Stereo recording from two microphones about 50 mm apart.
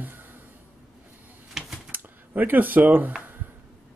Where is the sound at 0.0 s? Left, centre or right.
Right.